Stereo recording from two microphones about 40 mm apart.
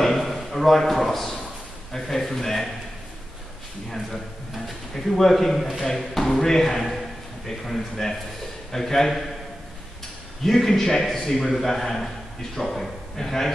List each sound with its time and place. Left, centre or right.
0.0 s a sound: centre
1.9 s speech: centre
3.9 s a man's voice: centre
5.9 s speech: centre
10.4 s speech: centre
11.3 s a man's voice: centre